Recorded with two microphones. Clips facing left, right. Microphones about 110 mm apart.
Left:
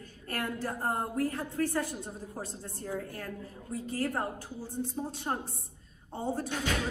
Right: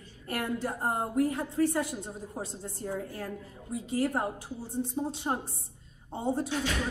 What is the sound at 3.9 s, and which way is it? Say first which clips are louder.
A woman's voice: right 4 dB; 15° right (ahead or behind).